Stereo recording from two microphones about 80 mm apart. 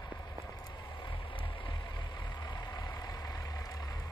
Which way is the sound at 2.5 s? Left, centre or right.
Left.